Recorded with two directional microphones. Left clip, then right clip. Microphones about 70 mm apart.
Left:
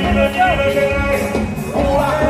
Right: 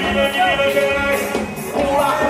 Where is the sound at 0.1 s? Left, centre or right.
Right.